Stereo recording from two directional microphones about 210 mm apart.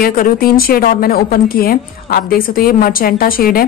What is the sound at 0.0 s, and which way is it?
A woman's voice, 45° left (ahead or behind).